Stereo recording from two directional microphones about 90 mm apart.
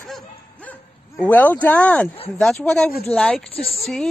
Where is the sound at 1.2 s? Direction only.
20° left (ahead or behind).